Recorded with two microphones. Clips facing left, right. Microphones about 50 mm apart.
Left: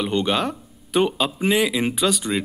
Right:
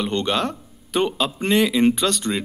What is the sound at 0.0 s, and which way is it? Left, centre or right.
Speech, centre.